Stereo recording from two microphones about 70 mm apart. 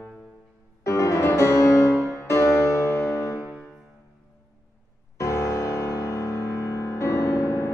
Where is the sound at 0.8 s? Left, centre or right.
Left.